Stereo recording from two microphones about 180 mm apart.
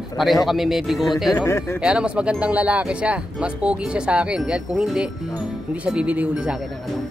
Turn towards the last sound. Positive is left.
turn(degrees=-5)  # may be behind; listen again after turning